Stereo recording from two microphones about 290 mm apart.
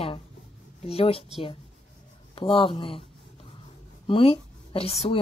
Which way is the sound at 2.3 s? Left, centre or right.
Centre.